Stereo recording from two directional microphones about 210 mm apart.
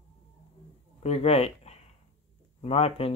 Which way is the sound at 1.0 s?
30° left (ahead or behind).